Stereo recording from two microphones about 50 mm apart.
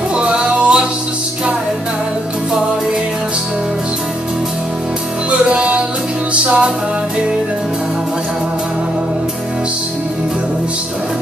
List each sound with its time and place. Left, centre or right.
0.1 s music: right
5.5 s music: centre